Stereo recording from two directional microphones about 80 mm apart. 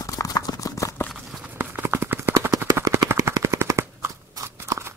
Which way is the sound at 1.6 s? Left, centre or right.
Right.